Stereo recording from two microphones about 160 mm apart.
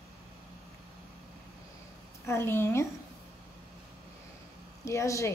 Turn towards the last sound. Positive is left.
turn(degrees=20)  # may be behind; listen again after turning